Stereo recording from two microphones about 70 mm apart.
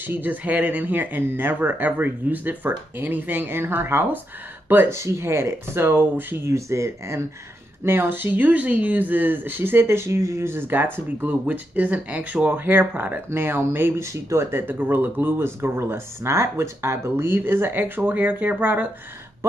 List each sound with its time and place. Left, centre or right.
0.0 s speech: right
4.8 s speech: right
6.4 s speech: right
7.8 s speech: right
14.7 s speech: right